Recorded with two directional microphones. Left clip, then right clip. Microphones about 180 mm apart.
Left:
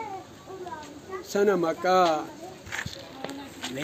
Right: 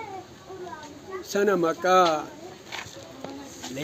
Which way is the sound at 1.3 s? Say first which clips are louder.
Right 1 dB; 15° right (ahead or behind).